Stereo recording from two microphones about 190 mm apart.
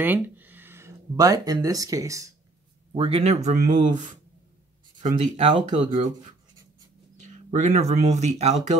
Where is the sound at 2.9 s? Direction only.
30° right (ahead or behind).